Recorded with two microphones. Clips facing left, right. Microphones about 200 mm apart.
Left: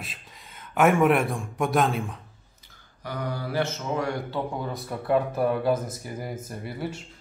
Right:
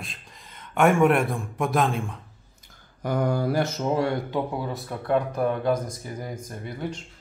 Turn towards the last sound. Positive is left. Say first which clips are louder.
# even
turn(degrees=5)  # may be behind; listen again after turning